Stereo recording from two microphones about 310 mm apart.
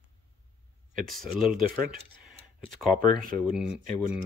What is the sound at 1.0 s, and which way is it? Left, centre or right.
Speech, centre.